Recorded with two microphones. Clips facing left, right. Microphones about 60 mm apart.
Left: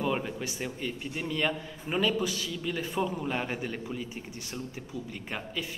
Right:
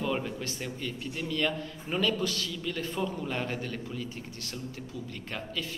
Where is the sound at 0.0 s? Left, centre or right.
Centre.